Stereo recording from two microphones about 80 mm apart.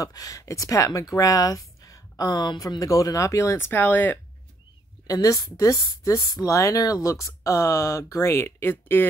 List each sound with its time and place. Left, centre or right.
0.0 s speech: left
2.8 s speech: left
5.0 s speech: left